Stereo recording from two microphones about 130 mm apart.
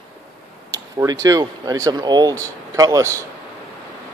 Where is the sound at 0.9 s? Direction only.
25° right (ahead or behind).